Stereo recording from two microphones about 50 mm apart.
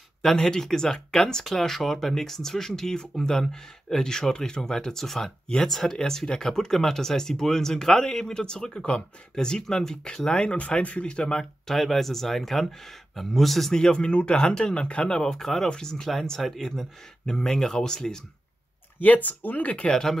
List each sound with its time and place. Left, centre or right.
0.2 s speech: centre
11.6 s speech: centre
13.7 s speech: centre
15.1 s speech: centre
18.9 s speech: left